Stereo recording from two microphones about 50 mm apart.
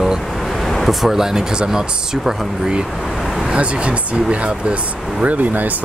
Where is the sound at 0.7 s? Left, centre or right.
Centre.